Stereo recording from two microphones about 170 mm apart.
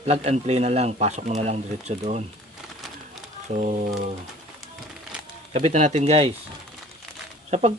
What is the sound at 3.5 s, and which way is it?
Speech, 45° right (ahead or behind).